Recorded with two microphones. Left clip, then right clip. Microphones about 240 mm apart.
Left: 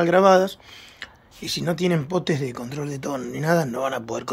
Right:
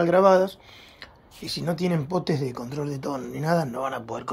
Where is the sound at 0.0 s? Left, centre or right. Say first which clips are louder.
Left 2 dB; centre.